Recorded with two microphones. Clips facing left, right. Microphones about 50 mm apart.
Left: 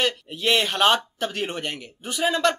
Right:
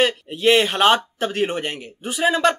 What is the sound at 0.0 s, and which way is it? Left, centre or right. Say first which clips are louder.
Speech: right 6 dB; centre.